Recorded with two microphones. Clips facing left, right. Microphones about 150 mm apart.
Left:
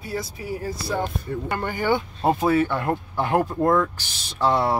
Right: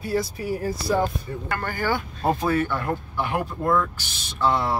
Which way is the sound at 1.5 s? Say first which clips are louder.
Left 2 dB; 20° left (ahead or behind).